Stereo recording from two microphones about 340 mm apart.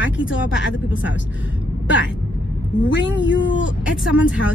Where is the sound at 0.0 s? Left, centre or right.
Left.